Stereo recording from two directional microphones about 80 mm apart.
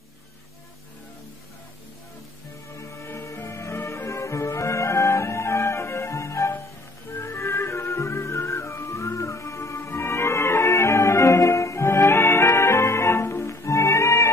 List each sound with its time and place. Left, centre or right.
2.7 s music: left